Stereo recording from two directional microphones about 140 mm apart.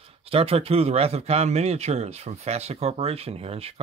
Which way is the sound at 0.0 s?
45° right (ahead or behind).